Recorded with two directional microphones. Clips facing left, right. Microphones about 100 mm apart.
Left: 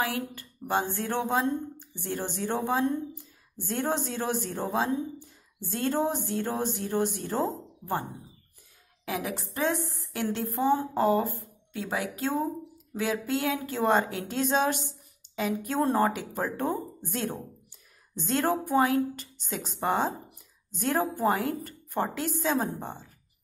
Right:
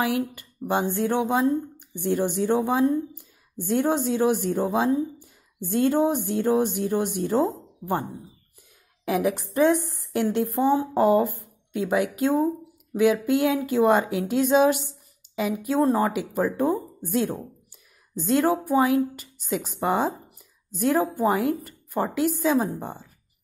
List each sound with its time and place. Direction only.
0.0 s a woman's voice: 15° right (ahead or behind)
9.0 s a woman's voice: 20° right (ahead or behind); by 16.1 s centre (ahead or behind)
16.3 s a woman's voice: 10° right (ahead or behind)
18.1 s a woman's voice: 5° right (ahead or behind)